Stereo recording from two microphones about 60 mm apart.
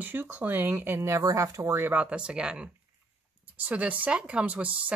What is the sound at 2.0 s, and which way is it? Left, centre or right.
Speech, centre.